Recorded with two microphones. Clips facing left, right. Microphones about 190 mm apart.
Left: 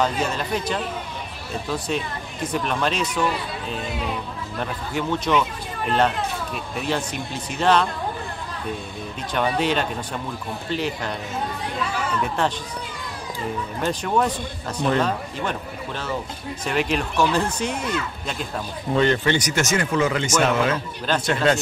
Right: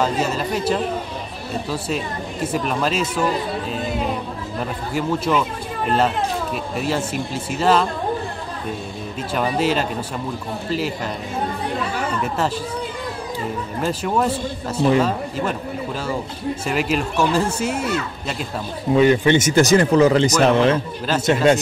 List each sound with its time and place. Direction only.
0.0 s speech: 5° right (ahead or behind)
4.6 s speech: 5° right (ahead or behind)
9.3 s speech: 5° right (ahead or behind)
12.2 s speech: 5° right (ahead or behind)
13.7 s speech: 5° right (ahead or behind)
16.6 s speech: 5° right (ahead or behind)
18.9 s speech: 10° right (ahead or behind)
19.3 s speech: 30° right (ahead or behind)
21.1 s speech: 5° right (ahead or behind)